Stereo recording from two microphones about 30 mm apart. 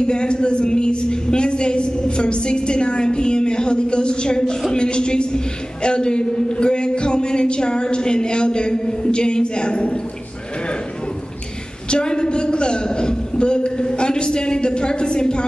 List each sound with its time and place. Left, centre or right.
0.0 s a woman's voice: left
11.9 s a woman's voice: left